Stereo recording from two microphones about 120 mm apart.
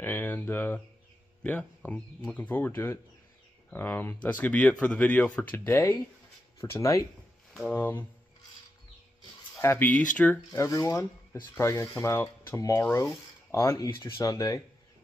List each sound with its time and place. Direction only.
0.0 s speech: 15° left (ahead or behind)
2.3 s speech: 15° left (ahead or behind)
5.7 s speech: 25° left (ahead or behind)
7.6 s speech: 15° left (ahead or behind)
9.6 s speech: 20° left (ahead or behind)
10.5 s speech: 30° left (ahead or behind)
14.1 s speech: 25° left (ahead or behind)